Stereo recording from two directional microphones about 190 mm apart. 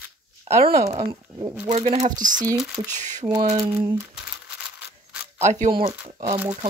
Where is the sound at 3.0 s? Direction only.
40° right (ahead or behind).